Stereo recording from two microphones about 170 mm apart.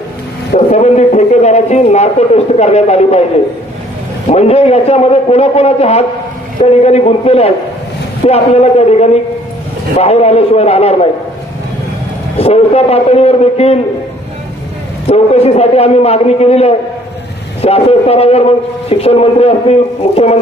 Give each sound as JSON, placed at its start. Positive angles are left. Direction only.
{"t": 0.7, "sound": "a man's voice", "side_deg": 40}
{"t": 4.3, "sound": "a man's voice", "side_deg": 40}
{"t": 12.4, "sound": "a man's voice", "side_deg": 35}
{"t": 15.0, "sound": "a man's voice", "side_deg": 35}